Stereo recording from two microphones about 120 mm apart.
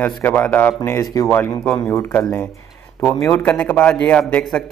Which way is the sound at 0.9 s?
30° left (ahead or behind).